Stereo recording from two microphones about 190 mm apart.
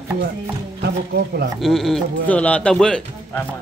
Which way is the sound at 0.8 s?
55° right (ahead or behind).